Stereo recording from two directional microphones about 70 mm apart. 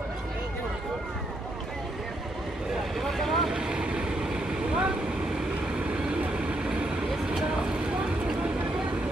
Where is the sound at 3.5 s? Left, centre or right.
Centre.